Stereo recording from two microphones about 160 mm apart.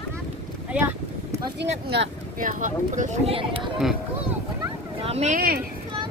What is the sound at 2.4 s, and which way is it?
Speech, 55° right (ahead or behind).